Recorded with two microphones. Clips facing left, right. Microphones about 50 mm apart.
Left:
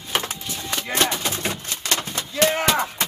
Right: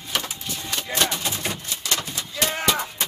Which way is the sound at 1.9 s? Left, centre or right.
Left.